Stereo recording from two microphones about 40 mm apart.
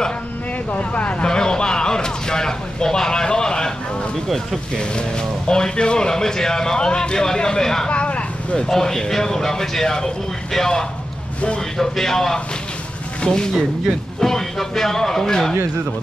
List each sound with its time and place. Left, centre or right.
0.7 s speech: left
1.2 s a sound: centre
5.5 s a man's voice: left
7.9 s a sound: left
8.6 s a man's voice: centre
14.2 s a man's voice: centre